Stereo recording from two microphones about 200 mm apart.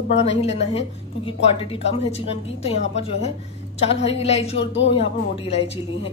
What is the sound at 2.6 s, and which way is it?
A woman's voice, 30° left (ahead or behind).